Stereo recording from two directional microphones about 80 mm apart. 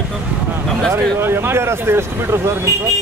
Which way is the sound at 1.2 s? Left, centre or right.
Right.